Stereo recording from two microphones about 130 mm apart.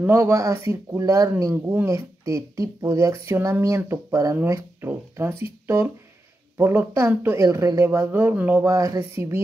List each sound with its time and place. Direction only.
0.0 s speech: 20° right (ahead or behind)
6.5 s speech: 20° right (ahead or behind)
8.6 s speech: 25° right (ahead or behind)